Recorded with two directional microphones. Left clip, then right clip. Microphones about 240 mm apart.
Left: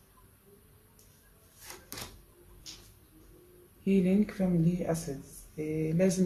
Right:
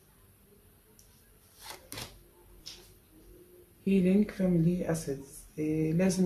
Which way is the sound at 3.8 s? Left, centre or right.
Centre.